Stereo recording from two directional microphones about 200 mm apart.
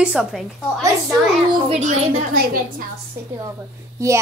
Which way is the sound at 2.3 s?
45° right (ahead or behind).